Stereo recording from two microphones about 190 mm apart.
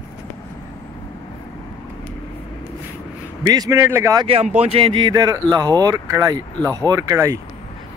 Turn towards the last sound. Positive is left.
turn(degrees=-15)  # may be behind; listen again after turning